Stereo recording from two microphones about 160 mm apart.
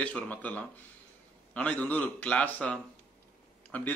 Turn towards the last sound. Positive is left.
turn(degrees=10)  # may be behind; listen again after turning